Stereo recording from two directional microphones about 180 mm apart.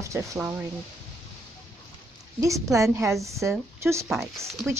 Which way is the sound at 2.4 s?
15° right (ahead or behind).